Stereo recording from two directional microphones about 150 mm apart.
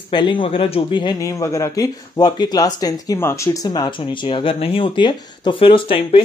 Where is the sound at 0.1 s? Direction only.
30° left (ahead or behind).